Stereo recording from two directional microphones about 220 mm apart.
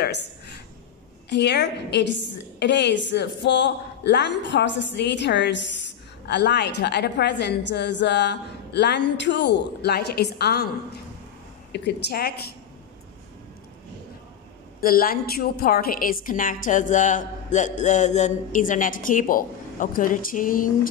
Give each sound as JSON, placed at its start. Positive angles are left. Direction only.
{"t": 0.0, "sound": "a sound", "side_deg": 50}
{"t": 1.3, "sound": "a woman's voice", "side_deg": 50}
{"t": 14.8, "sound": "a woman's voice", "side_deg": 40}